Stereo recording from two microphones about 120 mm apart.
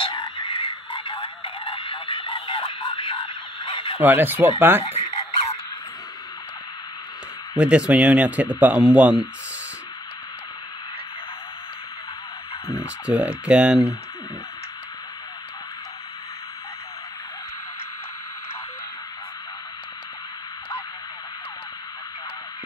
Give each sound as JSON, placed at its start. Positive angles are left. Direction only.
{"t": 0.0, "sound": "frog", "side_deg": 45}
{"t": 4.0, "sound": "a man's voice", "side_deg": -15}
{"t": 7.5, "sound": "a man's voice", "side_deg": -10}
{"t": 12.7, "sound": "a man's voice", "side_deg": -10}